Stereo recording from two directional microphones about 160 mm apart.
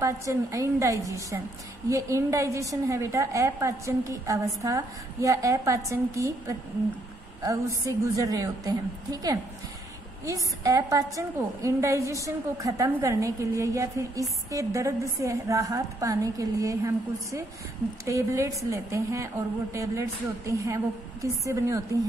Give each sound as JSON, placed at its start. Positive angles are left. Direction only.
{"t": 0.0, "sound": "a woman's voice", "side_deg": -20}